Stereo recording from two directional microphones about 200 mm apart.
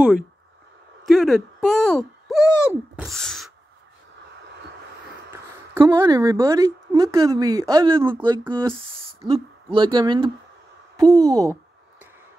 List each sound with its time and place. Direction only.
1.0 s speech: centre (ahead or behind)
5.3 s a woman's voice: 15° right (ahead or behind)